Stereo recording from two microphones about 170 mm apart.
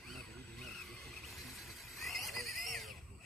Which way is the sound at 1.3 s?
Centre (ahead or behind).